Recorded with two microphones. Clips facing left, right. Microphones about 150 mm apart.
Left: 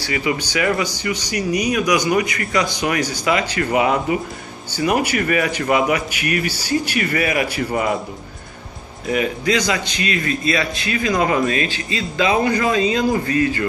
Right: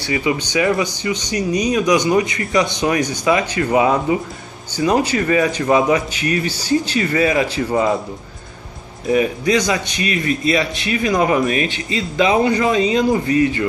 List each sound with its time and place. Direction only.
0.0 s a man's voice: 20° right (ahead or behind)
9.0 s a man's voice: 20° right (ahead or behind)